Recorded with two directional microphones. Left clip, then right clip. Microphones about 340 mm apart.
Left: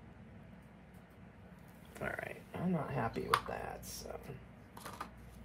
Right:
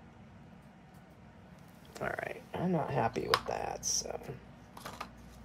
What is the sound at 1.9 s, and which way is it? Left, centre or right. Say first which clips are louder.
Speech: right 4 dB; centre.